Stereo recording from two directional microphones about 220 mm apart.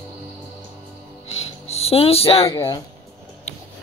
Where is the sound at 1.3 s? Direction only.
30° left (ahead or behind).